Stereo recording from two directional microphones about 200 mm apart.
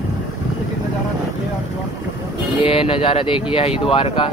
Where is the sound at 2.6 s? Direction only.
25° left (ahead or behind).